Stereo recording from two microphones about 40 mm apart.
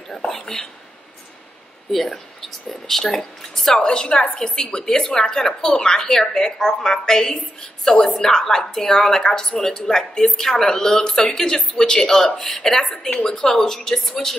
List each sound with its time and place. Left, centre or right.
0.3 s speech: centre
1.9 s a woman's voice: centre